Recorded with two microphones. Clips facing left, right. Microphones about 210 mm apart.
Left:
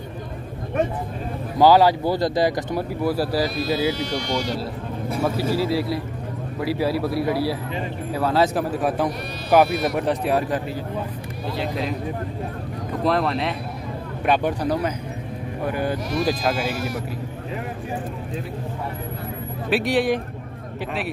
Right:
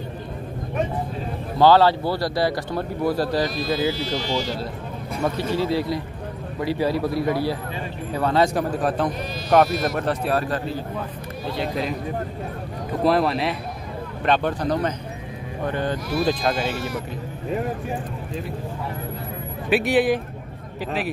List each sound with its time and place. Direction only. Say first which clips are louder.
1.6 s speech: left 1 dB; 15° left (ahead or behind)
3.0 s speech: right 1 dB; 5° left (ahead or behind)
5.1 s a man's voice: left 1 dB; 5° left (ahead or behind)
11.5 s a man's voice: even; centre (ahead or behind)
13.0 s a man's voice: right 2 dB; 5° right (ahead or behind)
14.2 s a man's voice: left 1 dB; 10° left (ahead or behind)
19.7 s a man's voice: right 1 dB; 5° right (ahead or behind)